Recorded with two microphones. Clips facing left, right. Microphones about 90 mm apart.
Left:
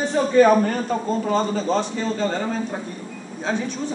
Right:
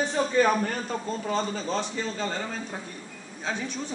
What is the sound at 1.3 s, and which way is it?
Speech, centre (ahead or behind).